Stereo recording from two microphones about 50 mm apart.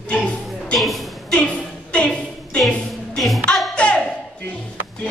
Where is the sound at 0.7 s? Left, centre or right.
Centre.